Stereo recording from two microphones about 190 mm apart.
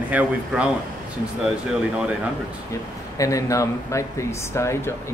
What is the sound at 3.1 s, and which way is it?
Speech, 15° left (ahead or behind).